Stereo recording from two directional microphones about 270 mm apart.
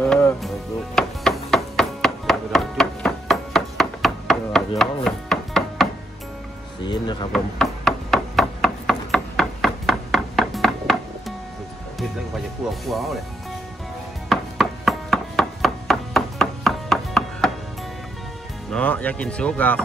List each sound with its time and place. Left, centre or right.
0.0 s music: centre
6.8 s music: centre
7.3 s a sound: centre
12.8 s speech: centre
14.3 s a sound: centre
18.7 s speech: centre